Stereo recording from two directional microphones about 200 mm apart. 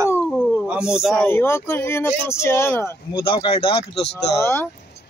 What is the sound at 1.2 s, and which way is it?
Speech, 10° left (ahead or behind).